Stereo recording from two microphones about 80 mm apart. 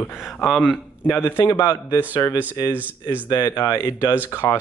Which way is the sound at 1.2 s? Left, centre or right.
Left.